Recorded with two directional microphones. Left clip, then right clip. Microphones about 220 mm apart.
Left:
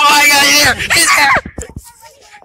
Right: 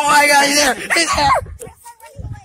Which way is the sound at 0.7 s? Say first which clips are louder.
Left 5 dB; 30° right (ahead or behind).